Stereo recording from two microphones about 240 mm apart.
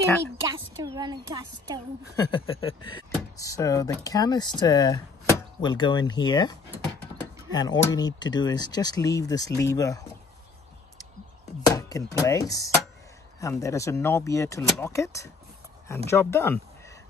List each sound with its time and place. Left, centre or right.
0.7 s speech: centre
2.1 s speech: left
7.5 s speech: centre
11.6 s chopping: centre
13.4 s speech: centre